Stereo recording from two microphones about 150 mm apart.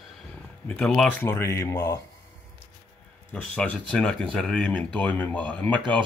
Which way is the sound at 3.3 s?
5° left (ahead or behind).